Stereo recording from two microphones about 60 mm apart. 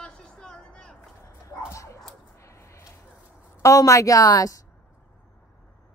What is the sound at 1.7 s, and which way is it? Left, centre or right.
Dog, left.